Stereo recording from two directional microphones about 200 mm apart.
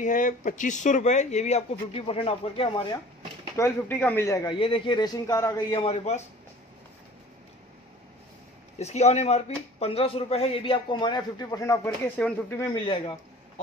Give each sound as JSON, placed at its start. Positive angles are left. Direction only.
{"t": 0.0, "sound": "speech", "side_deg": 40}
{"t": 3.5, "sound": "a man's voice", "side_deg": 10}
{"t": 8.7, "sound": "a man's voice", "side_deg": 35}